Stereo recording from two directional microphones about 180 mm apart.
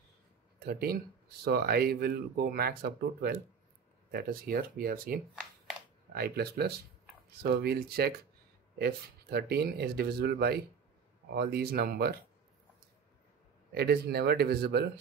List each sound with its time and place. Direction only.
0.6 s speech: 60° right (ahead or behind)
13.7 s speech: 65° right (ahead or behind)